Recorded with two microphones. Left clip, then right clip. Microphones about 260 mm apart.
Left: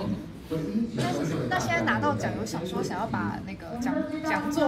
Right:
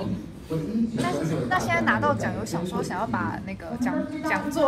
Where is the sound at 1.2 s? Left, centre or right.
Right.